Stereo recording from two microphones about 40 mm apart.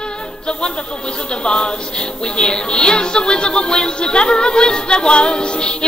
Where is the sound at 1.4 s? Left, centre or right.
Left.